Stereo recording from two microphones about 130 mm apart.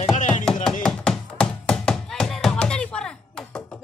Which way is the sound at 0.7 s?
5° left (ahead or behind).